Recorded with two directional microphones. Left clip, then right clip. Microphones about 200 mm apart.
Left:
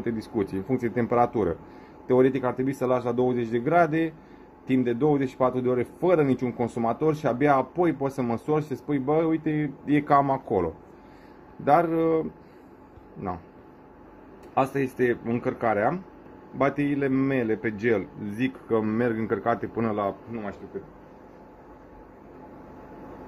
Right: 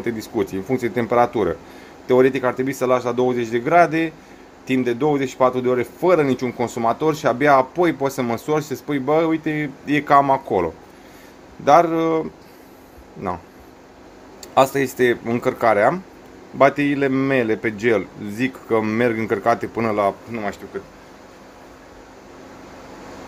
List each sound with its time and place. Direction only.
0.0 s speech: 5° right (ahead or behind)
14.5 s a man's voice: 10° right (ahead or behind)